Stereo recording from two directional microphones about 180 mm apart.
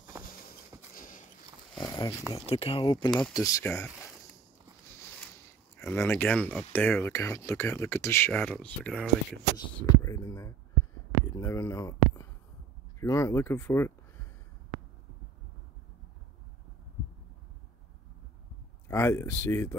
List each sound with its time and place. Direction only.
0.2 s a sound: 55° left (ahead or behind)
1.8 s a sound: 20° left (ahead or behind)
2.6 s speech: 30° left (ahead or behind)
3.2 s speech: centre (ahead or behind)
3.4 s speech: 20° left (ahead or behind)
5.8 s speech: 15° left (ahead or behind)
9.8 s whispering: 20° left (ahead or behind)
11.3 s speech: 15° left (ahead or behind)
18.9 s speech: 15° left (ahead or behind)